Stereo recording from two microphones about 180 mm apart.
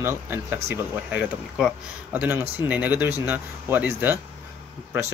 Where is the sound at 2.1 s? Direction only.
10° right (ahead or behind).